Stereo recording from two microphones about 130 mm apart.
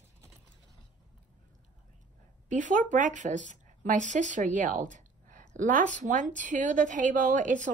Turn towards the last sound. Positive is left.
turn(degrees=-75)  # may be behind; listen again after turning